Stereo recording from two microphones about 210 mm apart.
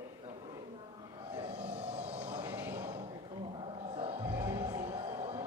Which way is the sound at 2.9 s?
25° right (ahead or behind).